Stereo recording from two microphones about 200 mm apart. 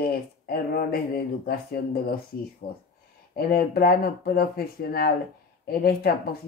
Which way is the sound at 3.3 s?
50° left (ahead or behind).